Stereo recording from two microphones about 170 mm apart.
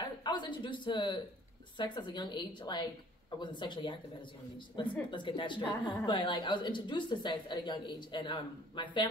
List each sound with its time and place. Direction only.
0.0 s a man's voice: 25° left (ahead or behind)